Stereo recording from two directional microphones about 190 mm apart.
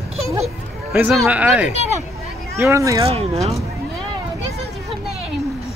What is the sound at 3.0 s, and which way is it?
Speech, 30° right (ahead or behind).